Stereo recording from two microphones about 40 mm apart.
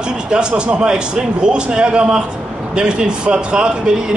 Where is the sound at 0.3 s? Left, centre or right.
Right.